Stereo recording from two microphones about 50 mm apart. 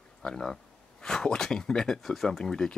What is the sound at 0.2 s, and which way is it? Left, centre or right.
Speech, centre.